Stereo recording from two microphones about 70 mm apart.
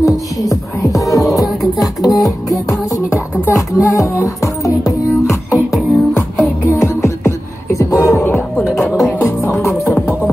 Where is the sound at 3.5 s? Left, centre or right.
Left.